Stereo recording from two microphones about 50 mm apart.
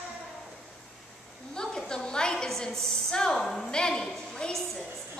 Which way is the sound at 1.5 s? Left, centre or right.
Centre.